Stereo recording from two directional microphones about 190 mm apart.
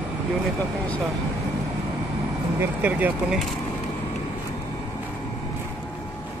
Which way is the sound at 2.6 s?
10° right (ahead or behind).